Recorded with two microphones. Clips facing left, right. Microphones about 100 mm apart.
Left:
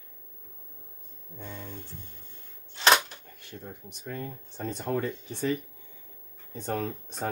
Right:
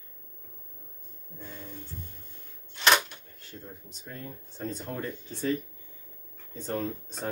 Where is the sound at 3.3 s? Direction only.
65° left (ahead or behind).